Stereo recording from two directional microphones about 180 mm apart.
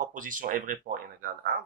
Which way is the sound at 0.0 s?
45° right (ahead or behind).